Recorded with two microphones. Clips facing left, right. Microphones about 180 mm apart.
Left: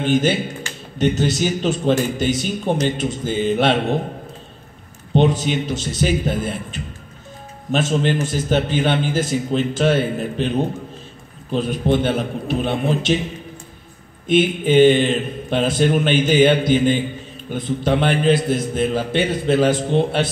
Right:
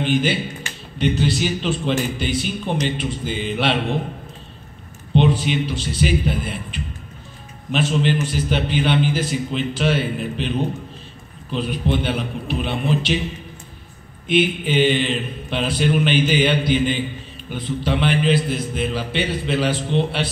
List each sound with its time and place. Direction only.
0.0 s a man's voice: 45° left (ahead or behind)
5.1 s a man's voice: 45° left (ahead or behind)
14.2 s a man's voice: 45° left (ahead or behind)